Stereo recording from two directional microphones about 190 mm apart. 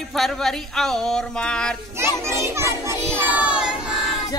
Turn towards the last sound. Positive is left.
turn(degrees=-5)  # may be behind; listen again after turning